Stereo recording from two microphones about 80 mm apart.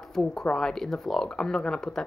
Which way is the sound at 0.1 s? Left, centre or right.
Centre.